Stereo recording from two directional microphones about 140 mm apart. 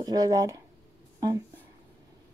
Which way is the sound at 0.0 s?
30° right (ahead or behind).